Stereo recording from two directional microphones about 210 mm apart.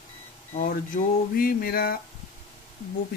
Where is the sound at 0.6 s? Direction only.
40° left (ahead or behind).